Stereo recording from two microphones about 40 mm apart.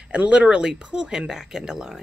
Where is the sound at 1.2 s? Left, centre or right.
Centre.